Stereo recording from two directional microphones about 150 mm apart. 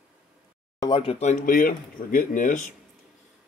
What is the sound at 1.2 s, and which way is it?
Speech, 65° left (ahead or behind).